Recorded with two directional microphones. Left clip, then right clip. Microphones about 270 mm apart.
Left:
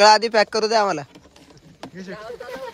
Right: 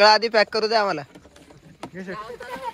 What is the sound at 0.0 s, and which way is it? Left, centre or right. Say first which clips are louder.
Speech: left 2 dB; centre.